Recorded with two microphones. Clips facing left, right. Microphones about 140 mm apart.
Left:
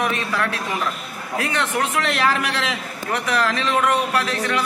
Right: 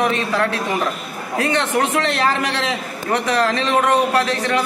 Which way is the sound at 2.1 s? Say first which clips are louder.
Right 2 dB; 30° right (ahead or behind).